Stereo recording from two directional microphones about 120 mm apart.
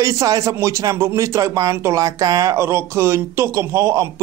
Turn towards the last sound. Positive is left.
turn(degrees=-25)  # may be behind; listen again after turning